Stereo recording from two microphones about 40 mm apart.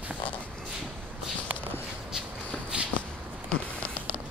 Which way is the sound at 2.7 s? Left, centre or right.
Right.